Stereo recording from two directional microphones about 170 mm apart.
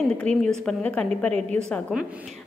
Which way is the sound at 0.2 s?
5° left (ahead or behind).